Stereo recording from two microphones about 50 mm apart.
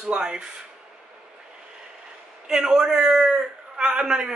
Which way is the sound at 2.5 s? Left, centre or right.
Centre.